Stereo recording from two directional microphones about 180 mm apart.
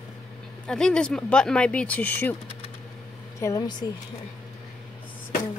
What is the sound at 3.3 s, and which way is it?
Speech, 20° left (ahead or behind).